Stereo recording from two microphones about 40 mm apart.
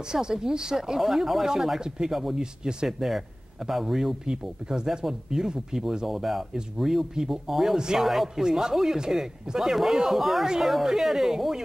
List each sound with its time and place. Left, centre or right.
0.1 s speech: centre
7.7 s speech: centre